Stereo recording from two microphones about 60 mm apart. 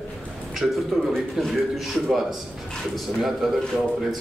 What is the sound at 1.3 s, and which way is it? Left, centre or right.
A man's voice, centre.